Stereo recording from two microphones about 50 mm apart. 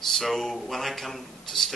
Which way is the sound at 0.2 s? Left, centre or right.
Centre.